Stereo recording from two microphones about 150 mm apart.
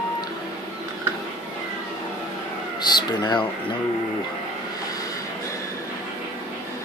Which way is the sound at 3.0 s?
30° left (ahead or behind).